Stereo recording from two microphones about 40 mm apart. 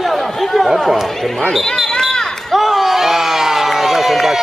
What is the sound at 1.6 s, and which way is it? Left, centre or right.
Speech, centre.